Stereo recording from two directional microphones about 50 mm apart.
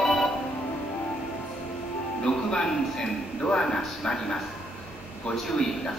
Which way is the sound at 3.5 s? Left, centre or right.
Centre.